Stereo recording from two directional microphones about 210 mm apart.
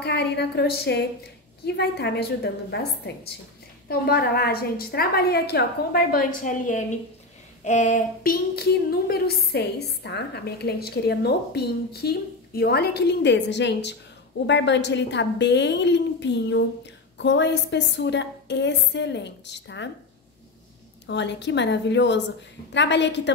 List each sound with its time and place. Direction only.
0.0 s a woman's voice: 50° left (ahead or behind)
21.1 s a woman's voice: 55° left (ahead or behind)